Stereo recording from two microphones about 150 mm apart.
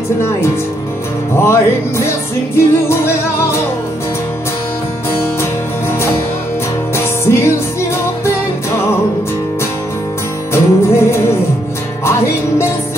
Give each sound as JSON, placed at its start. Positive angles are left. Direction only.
{"t": 1.3, "sound": "music", "side_deg": 15}
{"t": 7.0, "sound": "music", "side_deg": 20}
{"t": 10.5, "sound": "music", "side_deg": 15}